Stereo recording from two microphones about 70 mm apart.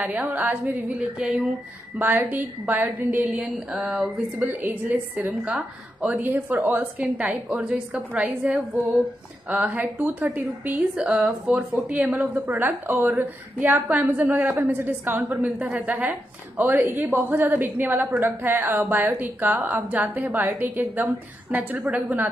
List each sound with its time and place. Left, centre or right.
0.0 s a woman's voice: right
2.0 s a woman's voice: right
3.5 s speech: centre
4.5 s a woman's voice: right